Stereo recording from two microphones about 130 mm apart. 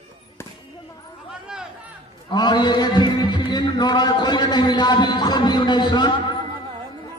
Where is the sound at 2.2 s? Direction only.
35° left (ahead or behind).